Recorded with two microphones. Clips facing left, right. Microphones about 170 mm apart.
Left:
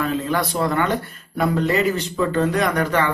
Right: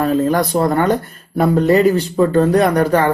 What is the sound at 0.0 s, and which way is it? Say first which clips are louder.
Speech: right 7 dB; 40° right (ahead or behind).